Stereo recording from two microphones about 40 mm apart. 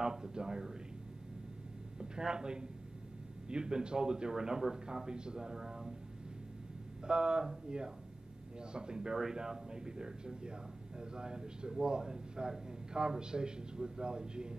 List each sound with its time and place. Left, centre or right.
0.0 s a man's voice: centre
2.0 s a man's voice: centre
7.1 s a man's voice: centre